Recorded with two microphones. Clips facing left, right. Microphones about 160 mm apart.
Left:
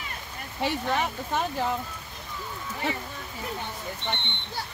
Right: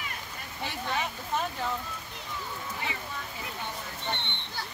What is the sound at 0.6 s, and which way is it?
Speech, 65° left (ahead or behind).